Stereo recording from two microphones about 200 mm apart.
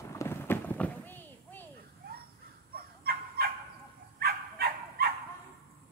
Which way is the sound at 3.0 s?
50° right (ahead or behind).